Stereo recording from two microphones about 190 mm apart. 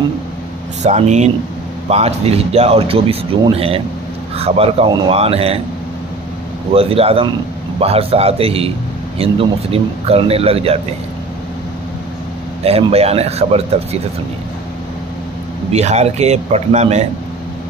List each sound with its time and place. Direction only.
0.8 s speech: 35° right (ahead or behind)
6.7 s speech: 30° right (ahead or behind)
12.6 s speech: 30° right (ahead or behind)
15.7 s speech: 35° right (ahead or behind)